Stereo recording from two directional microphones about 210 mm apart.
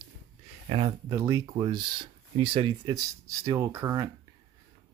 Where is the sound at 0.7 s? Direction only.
20° right (ahead or behind).